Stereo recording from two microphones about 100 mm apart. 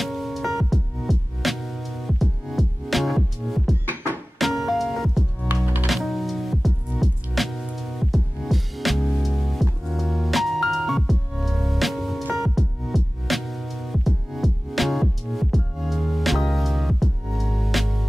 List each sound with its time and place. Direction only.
0.0 s music: centre (ahead or behind)
3.8 s music: 20° right (ahead or behind)
4.4 s music: centre (ahead or behind)
5.5 s music: 15° right (ahead or behind)
5.9 s music: centre (ahead or behind)